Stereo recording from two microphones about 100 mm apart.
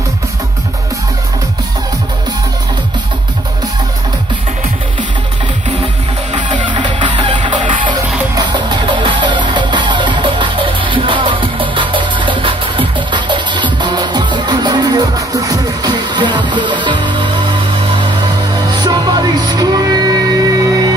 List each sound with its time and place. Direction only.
6.3 s music: 55° right (ahead or behind)
18.8 s music: 45° right (ahead or behind)